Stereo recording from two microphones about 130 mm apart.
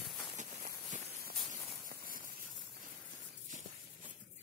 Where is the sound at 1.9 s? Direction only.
90° right.